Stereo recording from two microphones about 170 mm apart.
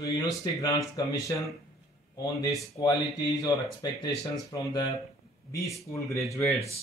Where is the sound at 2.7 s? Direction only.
20° left (ahead or behind).